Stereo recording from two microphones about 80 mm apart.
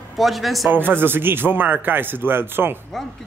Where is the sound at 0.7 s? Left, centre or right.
Right.